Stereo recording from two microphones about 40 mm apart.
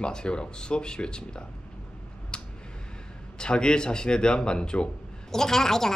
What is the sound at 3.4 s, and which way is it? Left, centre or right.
Speech, left.